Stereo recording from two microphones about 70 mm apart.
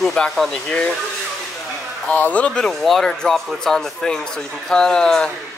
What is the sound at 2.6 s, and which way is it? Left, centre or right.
Speech, centre.